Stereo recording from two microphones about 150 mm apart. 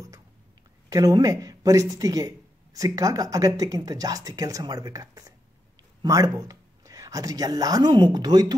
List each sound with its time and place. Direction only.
0.8 s speech: 25° right (ahead or behind)